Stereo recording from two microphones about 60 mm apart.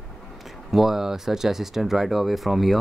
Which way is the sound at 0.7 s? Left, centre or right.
Centre.